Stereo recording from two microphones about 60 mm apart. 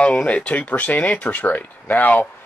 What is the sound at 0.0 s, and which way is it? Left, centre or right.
Speech, centre.